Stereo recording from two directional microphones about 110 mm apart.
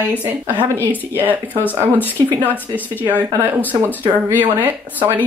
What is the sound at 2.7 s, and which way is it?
Speech, 15° left (ahead or behind).